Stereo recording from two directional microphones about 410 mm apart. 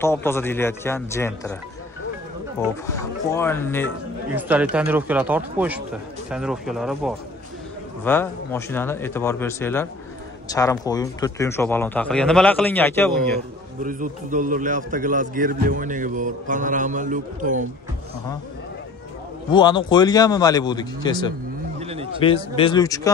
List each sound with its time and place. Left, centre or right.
0.0 s a man's voice: centre
13.8 s a man's voice: centre
19.5 s a man's voice: centre
21.7 s a sound: centre
22.2 s a man's voice: centre